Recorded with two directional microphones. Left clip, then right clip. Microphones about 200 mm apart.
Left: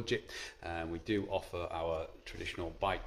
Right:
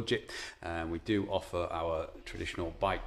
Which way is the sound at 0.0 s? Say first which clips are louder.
Right 3 dB; 15° right (ahead or behind).